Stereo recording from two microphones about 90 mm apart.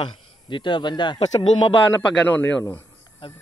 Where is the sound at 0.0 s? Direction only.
60° left (ahead or behind).